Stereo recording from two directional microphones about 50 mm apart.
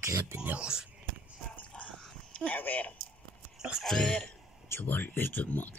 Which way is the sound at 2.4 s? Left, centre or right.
Left.